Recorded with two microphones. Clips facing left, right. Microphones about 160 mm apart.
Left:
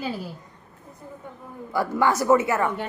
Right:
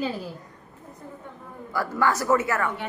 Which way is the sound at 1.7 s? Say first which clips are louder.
Left 2 dB; 20° left (ahead or behind).